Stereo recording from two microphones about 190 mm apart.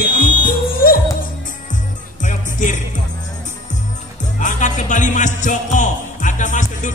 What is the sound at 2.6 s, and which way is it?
Music, 40° left (ahead or behind).